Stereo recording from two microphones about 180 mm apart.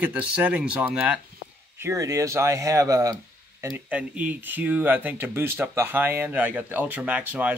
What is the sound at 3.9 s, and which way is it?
Speech, 10° right (ahead or behind).